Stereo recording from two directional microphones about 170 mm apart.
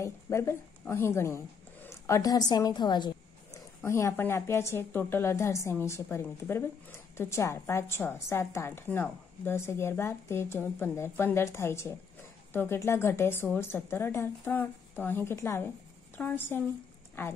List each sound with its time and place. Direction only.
0.0 s a woman's voice: 15° left (ahead or behind)